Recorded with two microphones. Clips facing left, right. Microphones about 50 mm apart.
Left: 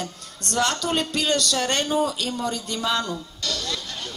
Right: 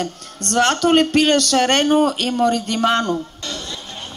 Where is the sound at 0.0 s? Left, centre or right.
Right.